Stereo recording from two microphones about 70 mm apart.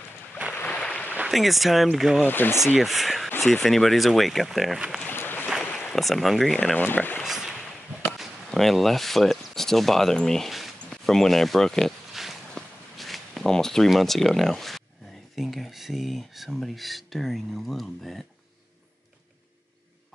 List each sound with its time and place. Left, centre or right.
0.6 s boat: centre
1.3 s speech: centre
2.2 s speech: left
2.8 s speech: centre
5.0 s boat: left
5.9 s speech: centre
6.8 s speech: left
7.2 s a sound: centre
15.3 s speech: centre